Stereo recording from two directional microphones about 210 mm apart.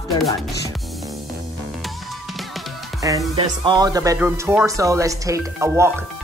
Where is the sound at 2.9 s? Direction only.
15° right (ahead or behind).